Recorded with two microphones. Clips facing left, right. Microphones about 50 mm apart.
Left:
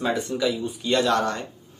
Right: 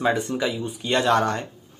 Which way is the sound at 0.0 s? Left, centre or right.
Right.